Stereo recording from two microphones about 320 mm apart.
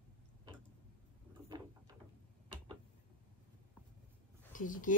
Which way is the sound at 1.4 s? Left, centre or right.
Centre.